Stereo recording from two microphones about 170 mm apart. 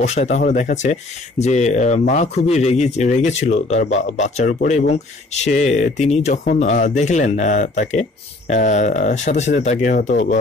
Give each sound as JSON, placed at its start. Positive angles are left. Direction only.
{"t": 0.0, "sound": "speech", "side_deg": 40}